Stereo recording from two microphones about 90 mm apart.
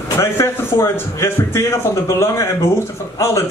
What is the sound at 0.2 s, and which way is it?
Speech, 30° left (ahead or behind).